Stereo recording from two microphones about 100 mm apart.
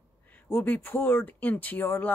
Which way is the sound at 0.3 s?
20° left (ahead or behind).